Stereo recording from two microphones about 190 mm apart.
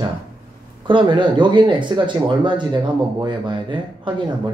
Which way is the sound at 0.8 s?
25° right (ahead or behind).